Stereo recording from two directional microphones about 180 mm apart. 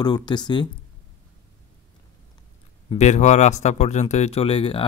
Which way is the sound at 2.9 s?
40° left (ahead or behind).